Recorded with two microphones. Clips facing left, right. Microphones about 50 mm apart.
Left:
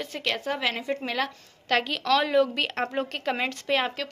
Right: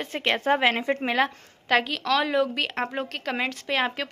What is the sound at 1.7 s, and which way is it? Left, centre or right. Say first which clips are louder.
A woman's voice: right 1 dB; centre.